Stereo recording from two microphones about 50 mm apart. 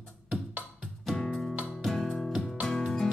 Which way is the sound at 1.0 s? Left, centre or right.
Centre.